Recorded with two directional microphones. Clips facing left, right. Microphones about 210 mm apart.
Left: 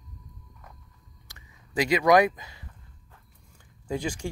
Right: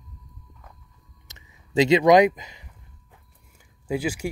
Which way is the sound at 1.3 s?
25° right (ahead or behind).